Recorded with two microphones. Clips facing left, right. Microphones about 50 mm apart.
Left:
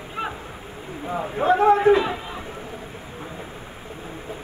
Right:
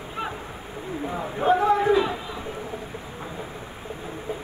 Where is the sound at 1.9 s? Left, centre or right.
Left.